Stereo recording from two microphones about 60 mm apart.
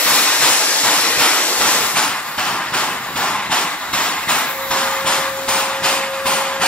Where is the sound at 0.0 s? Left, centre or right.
Centre.